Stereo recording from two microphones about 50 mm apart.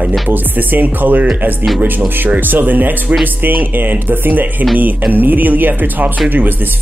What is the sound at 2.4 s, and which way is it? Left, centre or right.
Speech, right.